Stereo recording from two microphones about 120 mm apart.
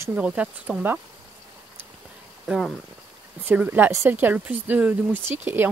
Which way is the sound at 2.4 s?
Centre (ahead or behind).